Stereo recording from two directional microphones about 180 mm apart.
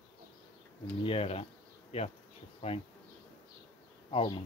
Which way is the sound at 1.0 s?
30° left (ahead or behind).